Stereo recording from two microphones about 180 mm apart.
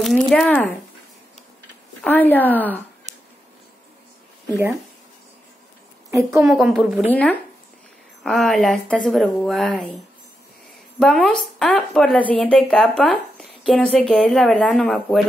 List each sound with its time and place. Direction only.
0.0 s speech: centre (ahead or behind)
2.0 s speech: 10° left (ahead or behind)
3.1 s a sound: 40° right (ahead or behind)
6.4 s speech: centre (ahead or behind)
7.1 s speech: 10° left (ahead or behind)
11.0 s speech: 5° left (ahead or behind)